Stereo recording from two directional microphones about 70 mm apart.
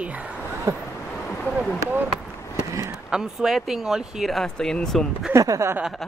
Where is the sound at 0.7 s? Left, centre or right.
Right.